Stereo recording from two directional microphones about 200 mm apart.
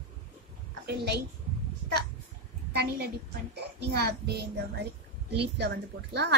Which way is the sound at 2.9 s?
55° right (ahead or behind).